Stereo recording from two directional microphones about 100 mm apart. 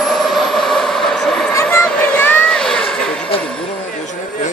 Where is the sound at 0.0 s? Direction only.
Centre (ahead or behind).